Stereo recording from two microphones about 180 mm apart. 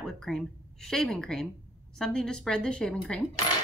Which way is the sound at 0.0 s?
Centre (ahead or behind).